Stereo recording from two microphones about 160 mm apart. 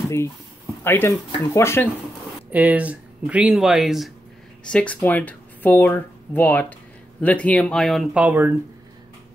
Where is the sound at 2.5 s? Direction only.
10° right (ahead or behind).